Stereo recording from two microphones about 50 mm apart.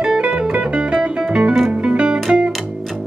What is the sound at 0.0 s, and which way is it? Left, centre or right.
Music, centre.